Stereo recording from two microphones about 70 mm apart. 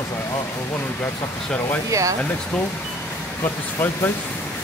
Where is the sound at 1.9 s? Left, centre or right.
Right.